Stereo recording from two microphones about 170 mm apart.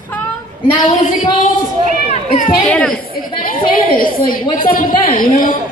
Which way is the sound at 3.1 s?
60° left (ahead or behind).